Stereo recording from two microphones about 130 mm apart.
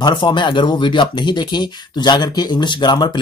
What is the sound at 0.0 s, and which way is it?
Speech, 35° left (ahead or behind).